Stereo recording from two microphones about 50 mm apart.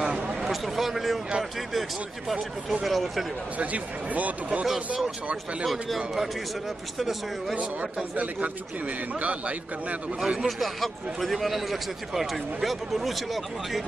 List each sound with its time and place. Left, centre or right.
0.0 s a sound: centre
0.5 s a sound: centre
1.7 s speech: centre
3.5 s a man's voice: right
4.7 s speech: centre
7.0 s speech: centre
10.2 s speech: centre
10.6 s speech: centre